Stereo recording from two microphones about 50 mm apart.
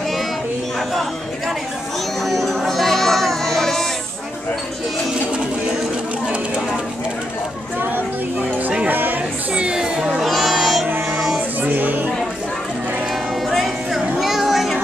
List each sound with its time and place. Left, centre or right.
2.2 s music: centre
8.4 s music: right
9.6 s a sound: centre
10.2 s music: centre
11.6 s music: right
13.9 s a sound: centre